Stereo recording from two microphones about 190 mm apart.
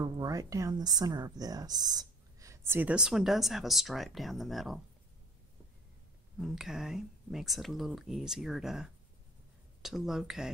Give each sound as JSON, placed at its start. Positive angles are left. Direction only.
{"t": 0.0, "sound": "speech", "side_deg": -20}
{"t": 6.4, "sound": "speech", "side_deg": 0}